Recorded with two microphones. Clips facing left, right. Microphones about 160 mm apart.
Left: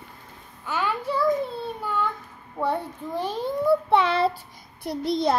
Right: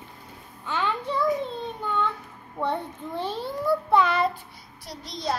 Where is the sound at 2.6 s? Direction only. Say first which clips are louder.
Left 2 dB; 10° left (ahead or behind); by 4.3 s 30° left (ahead or behind).